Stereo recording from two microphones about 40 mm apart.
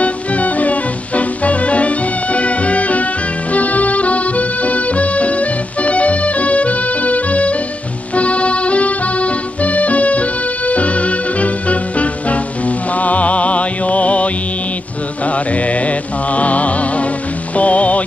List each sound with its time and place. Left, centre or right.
0.0 s music: left
3.5 s accordion: left
8.1 s music: left